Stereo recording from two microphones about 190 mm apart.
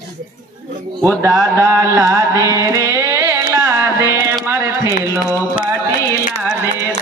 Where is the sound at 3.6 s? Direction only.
10° right (ahead or behind).